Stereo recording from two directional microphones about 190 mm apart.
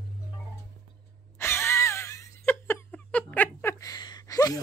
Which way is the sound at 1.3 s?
15° left (ahead or behind).